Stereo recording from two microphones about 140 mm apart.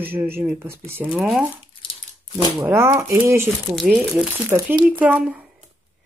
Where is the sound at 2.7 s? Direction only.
20° right (ahead or behind); by 5.5 s 5° right (ahead or behind).